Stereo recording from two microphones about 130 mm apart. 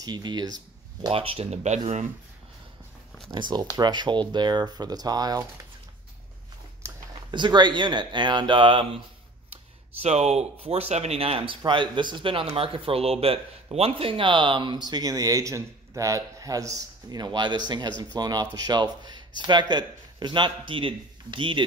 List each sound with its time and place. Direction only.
0.0 s speech: 35° right (ahead or behind)
1.1 s speech: 45° right (ahead or behind)
3.3 s speech: 35° right (ahead or behind)
7.2 s speech: 35° right (ahead or behind)
10.0 s speech: 55° right (ahead or behind); by 21.6 s 40° right (ahead or behind)